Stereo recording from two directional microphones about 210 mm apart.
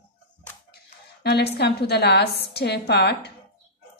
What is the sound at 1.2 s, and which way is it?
A woman's voice, 50° left (ahead or behind).